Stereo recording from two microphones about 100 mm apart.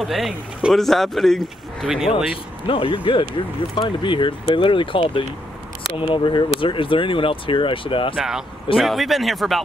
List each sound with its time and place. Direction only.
0.0 s speech: centre (ahead or behind)
2.6 s speech: 60° left (ahead or behind)
8.2 s speech: 5° right (ahead or behind)